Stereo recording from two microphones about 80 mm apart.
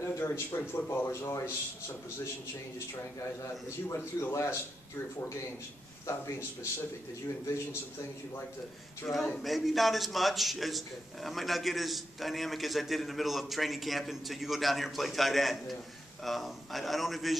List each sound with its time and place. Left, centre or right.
0.0 s a sound: left
0.8 s a man's voice: left
3.2 s a man's voice: left
6.0 s a man's voice: left
9.1 s a man's voice: centre